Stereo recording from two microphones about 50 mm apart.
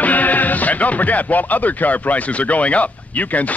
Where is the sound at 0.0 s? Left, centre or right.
Left.